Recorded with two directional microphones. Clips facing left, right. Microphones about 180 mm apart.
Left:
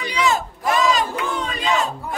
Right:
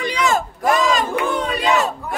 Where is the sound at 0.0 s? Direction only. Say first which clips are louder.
Right 2 dB; 50° right (ahead or behind); by 1.9 s 65° right (ahead or behind).